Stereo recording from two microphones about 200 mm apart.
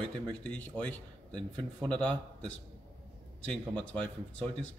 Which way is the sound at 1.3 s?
25° right (ahead or behind).